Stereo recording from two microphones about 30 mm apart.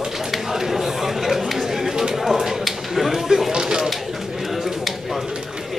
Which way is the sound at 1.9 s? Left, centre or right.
Right.